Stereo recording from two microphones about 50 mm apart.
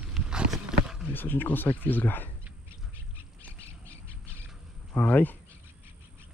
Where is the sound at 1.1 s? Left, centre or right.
Left.